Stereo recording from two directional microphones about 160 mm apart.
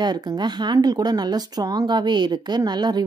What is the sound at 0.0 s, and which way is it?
Speech, 25° right (ahead or behind).